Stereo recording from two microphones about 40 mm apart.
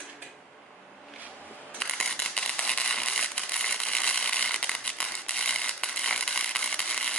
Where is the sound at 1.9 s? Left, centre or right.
Centre.